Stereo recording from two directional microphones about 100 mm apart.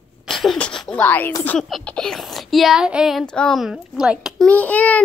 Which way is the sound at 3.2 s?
10° left (ahead or behind).